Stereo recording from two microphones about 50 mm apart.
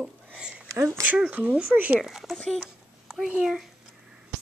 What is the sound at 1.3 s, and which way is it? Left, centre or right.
Speech, right.